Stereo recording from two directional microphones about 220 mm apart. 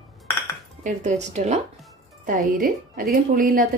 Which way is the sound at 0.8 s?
30° right (ahead or behind).